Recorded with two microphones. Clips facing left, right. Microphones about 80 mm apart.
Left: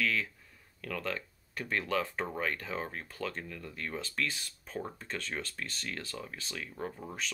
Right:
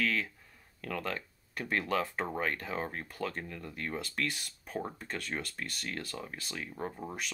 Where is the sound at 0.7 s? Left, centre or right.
Right.